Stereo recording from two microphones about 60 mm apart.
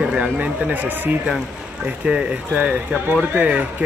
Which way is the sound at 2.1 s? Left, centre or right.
Centre.